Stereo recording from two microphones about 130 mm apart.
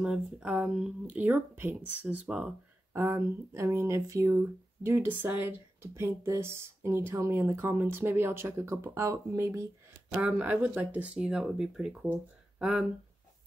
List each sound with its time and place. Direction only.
0.0 s speech: 5° right (ahead or behind)
2.9 s speech: 20° right (ahead or behind)